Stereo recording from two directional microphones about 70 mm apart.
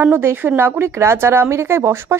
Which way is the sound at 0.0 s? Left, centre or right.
Right.